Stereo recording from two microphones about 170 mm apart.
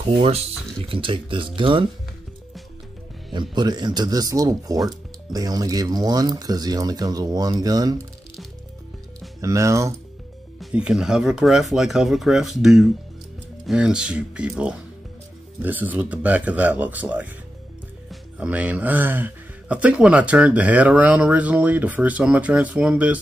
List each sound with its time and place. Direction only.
0.8 s speech: 30° right (ahead or behind)
3.5 s speech: 25° right (ahead or behind)
9.4 s speech: 20° right (ahead or behind)
10.6 s speech: 5° right (ahead or behind)